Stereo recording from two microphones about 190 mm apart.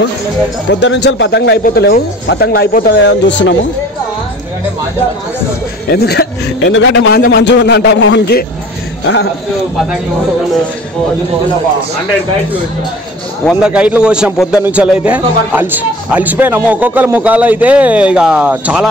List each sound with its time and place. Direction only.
0.7 s speech: 70° left (ahead or behind)
5.9 s speech: 55° left (ahead or behind); by 7.2 s 75° left (ahead or behind)
7.2 s a man's voice: 55° left (ahead or behind)
13.5 s a man's voice: 5° right (ahead or behind)